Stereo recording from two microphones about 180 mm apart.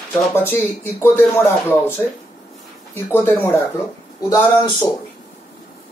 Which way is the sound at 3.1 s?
15° left (ahead or behind).